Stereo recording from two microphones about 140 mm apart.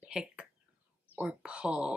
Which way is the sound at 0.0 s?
5° right (ahead or behind).